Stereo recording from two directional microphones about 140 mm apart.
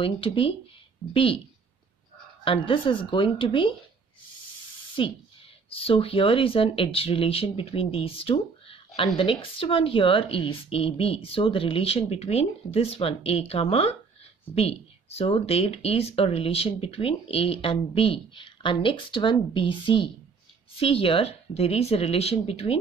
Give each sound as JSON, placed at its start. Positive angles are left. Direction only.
{"t": 0.0, "sound": "speech", "side_deg": 40}
{"t": 2.4, "sound": "speech", "side_deg": 40}
{"t": 5.0, "sound": "speech", "side_deg": 35}